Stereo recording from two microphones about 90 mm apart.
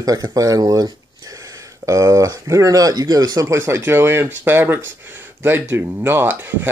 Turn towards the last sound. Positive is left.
turn(degrees=-20)  # may be behind; listen again after turning